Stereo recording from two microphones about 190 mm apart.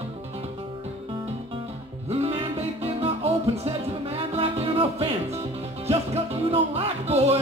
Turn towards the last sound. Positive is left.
turn(degrees=-30)  # may be behind; listen again after turning